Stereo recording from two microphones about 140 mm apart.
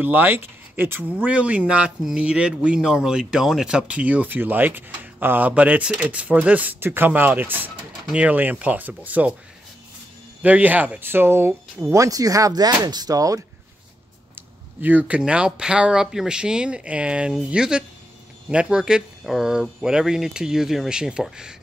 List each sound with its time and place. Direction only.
0.0 s speech: 15° right (ahead or behind)
10.4 s speech: 10° right (ahead or behind)
14.8 s speech: 10° right (ahead or behind)